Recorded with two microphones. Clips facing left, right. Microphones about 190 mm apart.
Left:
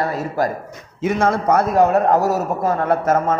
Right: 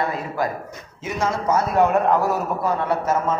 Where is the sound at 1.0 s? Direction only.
60° left (ahead or behind).